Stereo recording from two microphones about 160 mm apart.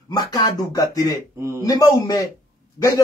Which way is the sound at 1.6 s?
20° left (ahead or behind).